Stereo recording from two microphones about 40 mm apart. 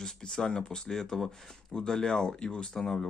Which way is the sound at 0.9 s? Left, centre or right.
Centre.